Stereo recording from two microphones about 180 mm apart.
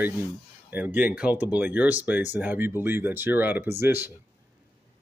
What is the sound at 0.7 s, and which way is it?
Speech, 10° right (ahead or behind).